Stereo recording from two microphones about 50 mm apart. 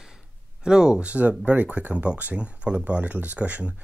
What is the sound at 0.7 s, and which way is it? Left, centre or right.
Speech, centre.